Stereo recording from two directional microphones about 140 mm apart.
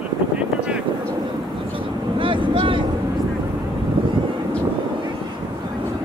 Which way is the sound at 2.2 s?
35° right (ahead or behind).